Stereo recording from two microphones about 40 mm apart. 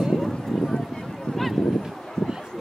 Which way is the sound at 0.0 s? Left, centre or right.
Centre.